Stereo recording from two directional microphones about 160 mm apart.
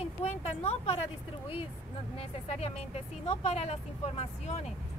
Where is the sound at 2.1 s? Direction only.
40° left (ahead or behind).